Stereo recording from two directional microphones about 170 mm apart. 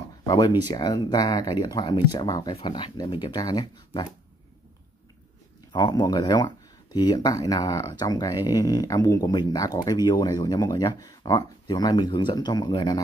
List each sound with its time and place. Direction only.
0.3 s speech: 25° left (ahead or behind)
5.7 s speech: 25° left (ahead or behind)